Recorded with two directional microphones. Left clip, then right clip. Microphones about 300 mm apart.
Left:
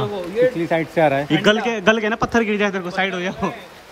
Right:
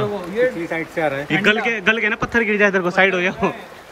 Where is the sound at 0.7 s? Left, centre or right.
Left.